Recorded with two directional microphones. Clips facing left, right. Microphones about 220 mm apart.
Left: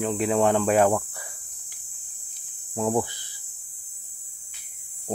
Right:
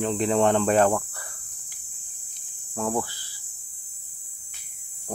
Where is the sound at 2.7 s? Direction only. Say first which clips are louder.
Left 3 dB; 20° left (ahead or behind).